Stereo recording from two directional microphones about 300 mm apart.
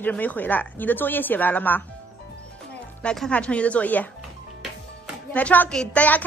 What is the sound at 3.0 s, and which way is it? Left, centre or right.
Speech, centre.